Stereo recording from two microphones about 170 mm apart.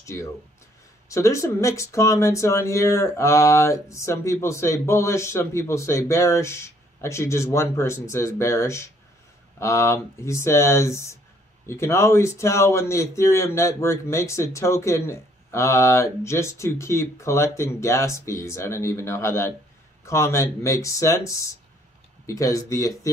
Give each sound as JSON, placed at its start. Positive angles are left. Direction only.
{"t": 0.0, "sound": "a man's voice", "side_deg": 15}